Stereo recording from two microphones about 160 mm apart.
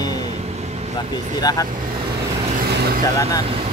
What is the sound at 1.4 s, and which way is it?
Speech, 25° left (ahead or behind).